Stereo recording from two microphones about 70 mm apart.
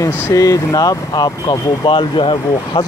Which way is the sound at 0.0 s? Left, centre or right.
Left.